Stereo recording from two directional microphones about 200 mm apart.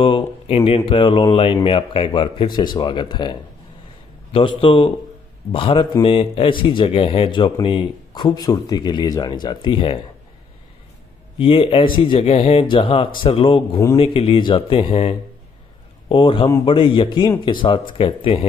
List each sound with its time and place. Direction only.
0.0 s speech: 25° left (ahead or behind)
11.3 s speech: 25° left (ahead or behind)